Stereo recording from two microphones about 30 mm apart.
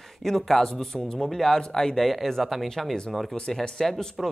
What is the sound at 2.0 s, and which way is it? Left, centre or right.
Speech, centre.